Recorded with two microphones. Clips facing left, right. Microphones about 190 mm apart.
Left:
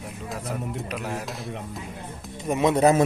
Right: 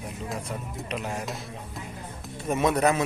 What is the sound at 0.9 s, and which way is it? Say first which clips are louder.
Speech: right 2 dB; centre (ahead or behind).